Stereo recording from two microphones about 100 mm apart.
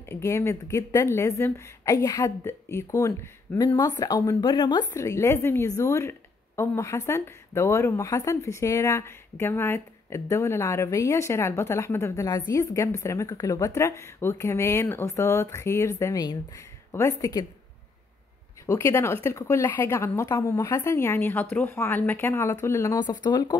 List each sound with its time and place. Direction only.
0.1 s a woman's voice: 25° left (ahead or behind); by 4.8 s 45° left (ahead or behind)
4.9 s speech: 30° left (ahead or behind)
18.7 s speech: 25° left (ahead or behind)
22.9 s speech: 45° left (ahead or behind)